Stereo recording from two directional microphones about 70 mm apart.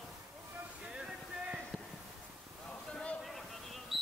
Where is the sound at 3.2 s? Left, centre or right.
Centre.